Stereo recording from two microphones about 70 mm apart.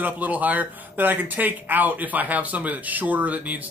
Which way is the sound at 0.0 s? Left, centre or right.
Right.